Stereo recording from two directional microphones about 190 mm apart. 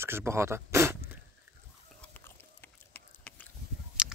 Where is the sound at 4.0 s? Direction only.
5° right (ahead or behind).